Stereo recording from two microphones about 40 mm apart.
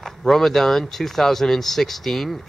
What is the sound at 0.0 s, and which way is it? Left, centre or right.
Speech, centre.